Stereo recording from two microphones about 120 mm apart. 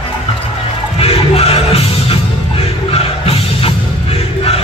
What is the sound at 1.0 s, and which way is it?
Music, 55° left (ahead or behind).